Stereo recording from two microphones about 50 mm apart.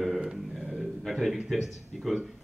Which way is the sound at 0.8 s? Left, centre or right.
Centre.